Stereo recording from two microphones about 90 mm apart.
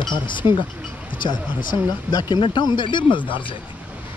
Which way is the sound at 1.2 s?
55° left (ahead or behind).